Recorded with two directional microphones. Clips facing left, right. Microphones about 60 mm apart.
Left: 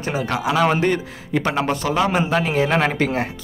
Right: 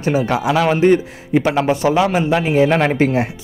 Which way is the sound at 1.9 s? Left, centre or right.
Centre.